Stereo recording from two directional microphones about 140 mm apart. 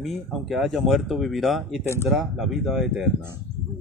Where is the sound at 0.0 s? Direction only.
Centre (ahead or behind).